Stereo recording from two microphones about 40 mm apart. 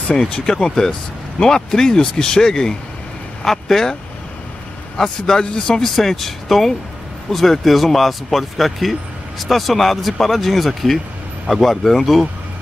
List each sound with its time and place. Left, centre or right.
0.1 s speech: centre
4.9 s speech: centre
5.8 s speech: centre